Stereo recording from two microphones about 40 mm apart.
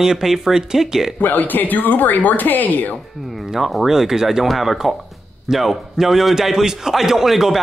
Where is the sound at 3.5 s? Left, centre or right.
Centre.